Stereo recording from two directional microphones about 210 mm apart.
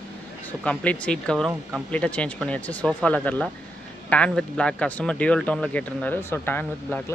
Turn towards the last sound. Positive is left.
turn(degrees=10)  # may be behind; listen again after turning